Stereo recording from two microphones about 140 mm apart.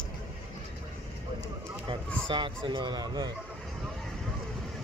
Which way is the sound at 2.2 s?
35° right (ahead or behind).